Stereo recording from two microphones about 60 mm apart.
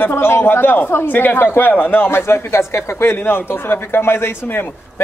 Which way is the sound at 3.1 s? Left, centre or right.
Left.